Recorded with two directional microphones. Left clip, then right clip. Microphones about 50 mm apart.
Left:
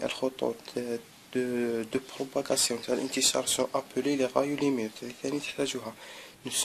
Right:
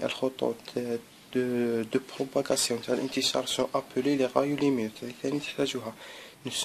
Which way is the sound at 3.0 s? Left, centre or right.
Left.